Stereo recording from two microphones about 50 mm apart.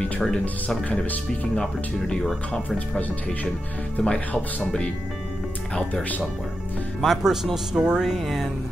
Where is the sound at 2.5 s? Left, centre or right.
Left.